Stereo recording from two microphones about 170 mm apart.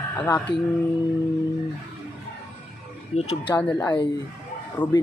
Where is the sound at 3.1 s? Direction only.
40° left (ahead or behind).